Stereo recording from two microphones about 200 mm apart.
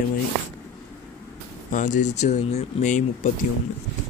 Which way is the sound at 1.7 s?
40° left (ahead or behind).